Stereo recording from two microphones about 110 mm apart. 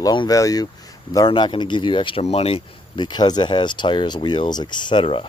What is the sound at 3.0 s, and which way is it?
Speech, 40° left (ahead or behind).